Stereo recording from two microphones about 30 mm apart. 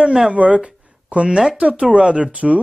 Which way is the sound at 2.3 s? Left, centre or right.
Right.